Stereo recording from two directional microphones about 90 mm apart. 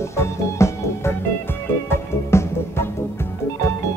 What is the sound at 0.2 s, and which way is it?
Music, 30° left (ahead or behind).